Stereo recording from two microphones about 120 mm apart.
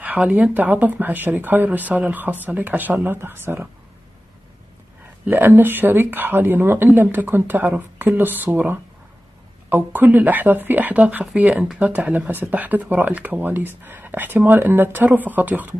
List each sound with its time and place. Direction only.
0.0 s speech: 10° right (ahead or behind)
5.2 s speech: 15° right (ahead or behind)